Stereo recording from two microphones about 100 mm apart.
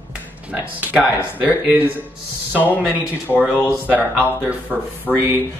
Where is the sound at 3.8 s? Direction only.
15° right (ahead or behind).